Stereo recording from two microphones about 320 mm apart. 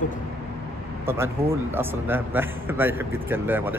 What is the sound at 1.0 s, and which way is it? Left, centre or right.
A man's voice, centre.